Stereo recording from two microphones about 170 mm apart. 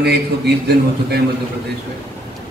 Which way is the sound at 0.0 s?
75° right (ahead or behind).